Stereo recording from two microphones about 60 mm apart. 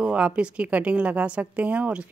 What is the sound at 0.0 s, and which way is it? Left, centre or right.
A woman's voice, centre.